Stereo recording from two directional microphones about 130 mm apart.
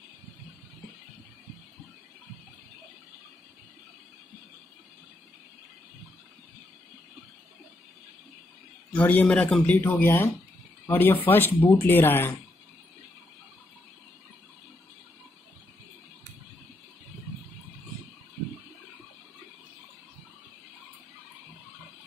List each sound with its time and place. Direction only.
8.9 s speech: 10° left (ahead or behind)